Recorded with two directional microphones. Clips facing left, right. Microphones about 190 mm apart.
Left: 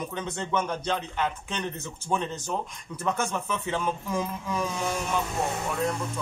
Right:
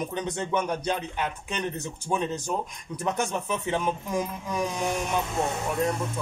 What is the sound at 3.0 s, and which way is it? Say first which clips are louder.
Speech: right 1 dB; 20° right (ahead or behind).